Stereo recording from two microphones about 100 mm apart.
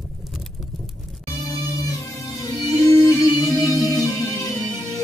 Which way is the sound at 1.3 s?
35° left (ahead or behind).